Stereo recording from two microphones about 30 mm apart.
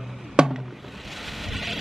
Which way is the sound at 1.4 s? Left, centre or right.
Centre.